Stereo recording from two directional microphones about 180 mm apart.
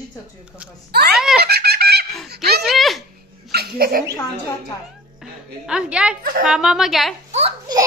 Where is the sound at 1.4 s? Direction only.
60° right (ahead or behind).